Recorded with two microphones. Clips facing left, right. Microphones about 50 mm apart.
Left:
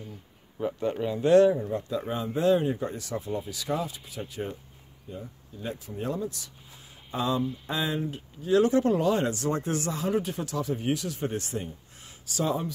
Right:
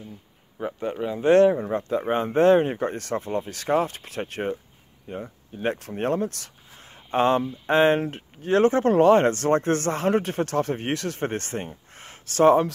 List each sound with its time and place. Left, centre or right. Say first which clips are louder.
0.6 s speech: even; right
1.2 s speech: right 3 dB; right
1.5 s speech: right 4 dB; right